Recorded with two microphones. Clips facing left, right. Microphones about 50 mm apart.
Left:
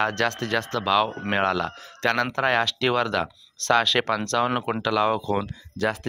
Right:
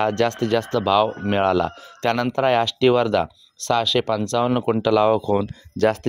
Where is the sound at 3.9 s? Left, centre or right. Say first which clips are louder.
Right 3 dB; left.